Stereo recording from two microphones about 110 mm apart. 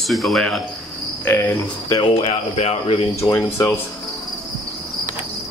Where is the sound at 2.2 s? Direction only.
75° left (ahead or behind).